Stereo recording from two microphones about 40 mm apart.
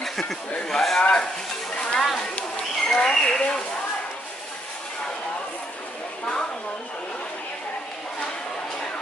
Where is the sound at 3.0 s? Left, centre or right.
Left.